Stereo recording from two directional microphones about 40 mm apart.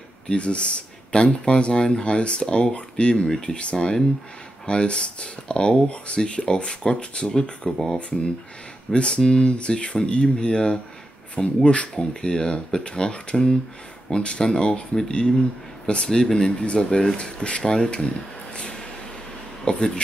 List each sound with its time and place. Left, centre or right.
0.3 s speech: left
3.3 s speech: centre
4.6 s speech: left
8.9 s speech: left
11.9 s speech: centre
16.6 s speech: left